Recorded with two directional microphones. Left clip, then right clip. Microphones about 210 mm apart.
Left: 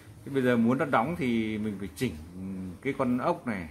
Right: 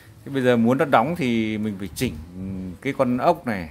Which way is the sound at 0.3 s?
45° right (ahead or behind).